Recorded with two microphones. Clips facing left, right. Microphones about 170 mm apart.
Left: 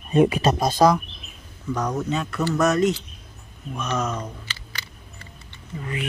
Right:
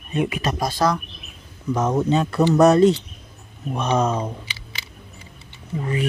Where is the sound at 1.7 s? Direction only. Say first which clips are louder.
Right 5 dB; 25° right (ahead or behind).